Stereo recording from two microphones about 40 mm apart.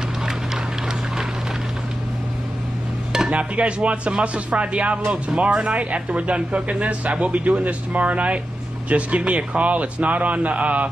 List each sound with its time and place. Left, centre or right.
3.3 s speech: right